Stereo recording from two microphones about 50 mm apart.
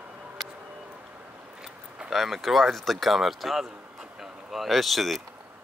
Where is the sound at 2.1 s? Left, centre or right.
Centre.